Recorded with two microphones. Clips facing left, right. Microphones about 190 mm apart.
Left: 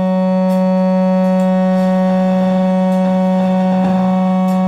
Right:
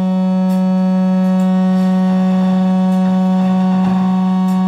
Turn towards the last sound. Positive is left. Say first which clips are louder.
# left 1 dB
turn(degrees=60)  # may be behind; listen again after turning